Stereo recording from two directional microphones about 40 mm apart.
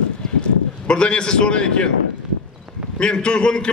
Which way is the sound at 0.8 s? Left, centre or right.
Left.